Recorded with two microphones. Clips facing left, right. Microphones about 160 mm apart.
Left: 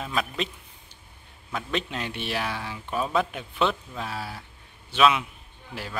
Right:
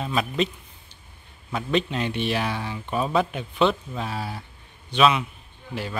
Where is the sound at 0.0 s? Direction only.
Centre (ahead or behind).